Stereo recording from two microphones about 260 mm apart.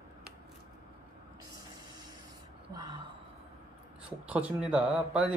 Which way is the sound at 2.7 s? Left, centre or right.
Centre.